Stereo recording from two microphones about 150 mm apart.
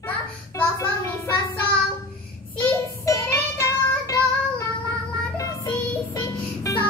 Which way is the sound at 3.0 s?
20° left (ahead or behind).